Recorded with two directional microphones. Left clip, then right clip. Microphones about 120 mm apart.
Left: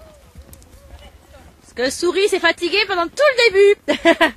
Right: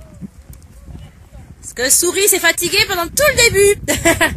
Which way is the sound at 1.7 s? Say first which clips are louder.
Right 2 dB; 30° right (ahead or behind).